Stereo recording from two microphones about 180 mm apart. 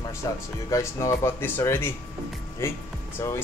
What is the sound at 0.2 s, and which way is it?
Speech, 20° left (ahead or behind).